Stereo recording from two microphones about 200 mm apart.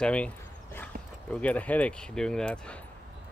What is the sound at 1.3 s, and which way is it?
Speech, 5° left (ahead or behind).